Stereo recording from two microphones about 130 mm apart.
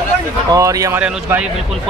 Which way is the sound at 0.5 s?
25° right (ahead or behind).